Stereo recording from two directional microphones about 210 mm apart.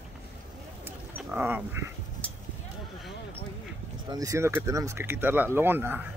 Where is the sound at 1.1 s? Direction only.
10° right (ahead or behind).